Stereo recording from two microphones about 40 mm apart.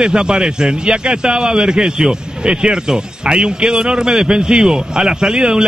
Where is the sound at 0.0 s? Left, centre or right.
Right.